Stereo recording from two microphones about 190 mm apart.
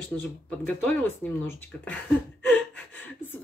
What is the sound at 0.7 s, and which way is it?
Speech, 5° left (ahead or behind).